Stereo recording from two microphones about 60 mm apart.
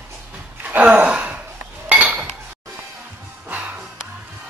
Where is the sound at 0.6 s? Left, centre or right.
Right.